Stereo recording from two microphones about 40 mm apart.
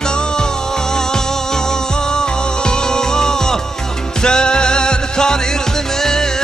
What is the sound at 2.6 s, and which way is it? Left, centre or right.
Music, centre.